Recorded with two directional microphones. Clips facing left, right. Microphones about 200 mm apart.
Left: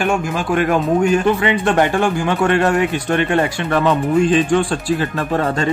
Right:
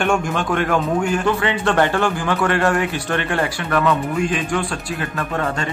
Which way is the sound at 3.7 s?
30° left (ahead or behind).